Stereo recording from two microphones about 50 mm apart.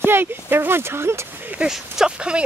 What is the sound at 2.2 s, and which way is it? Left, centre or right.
Speech, right.